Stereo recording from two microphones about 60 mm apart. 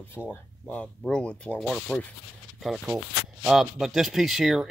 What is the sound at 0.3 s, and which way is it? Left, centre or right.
Speech, left.